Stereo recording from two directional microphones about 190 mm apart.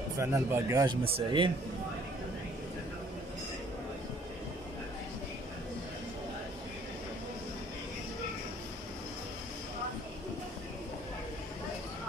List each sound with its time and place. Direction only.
0.2 s speech: 15° right (ahead or behind)